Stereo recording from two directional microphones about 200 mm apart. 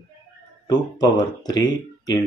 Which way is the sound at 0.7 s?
20° left (ahead or behind).